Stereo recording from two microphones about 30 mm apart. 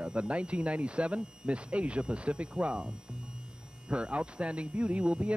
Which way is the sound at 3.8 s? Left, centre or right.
Right.